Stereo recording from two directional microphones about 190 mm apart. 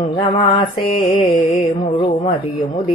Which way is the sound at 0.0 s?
30° left (ahead or behind).